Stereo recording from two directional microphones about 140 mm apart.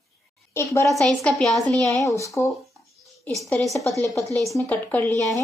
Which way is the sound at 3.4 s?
10° left (ahead or behind).